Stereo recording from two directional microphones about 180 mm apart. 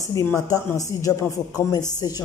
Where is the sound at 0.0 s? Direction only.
15° left (ahead or behind).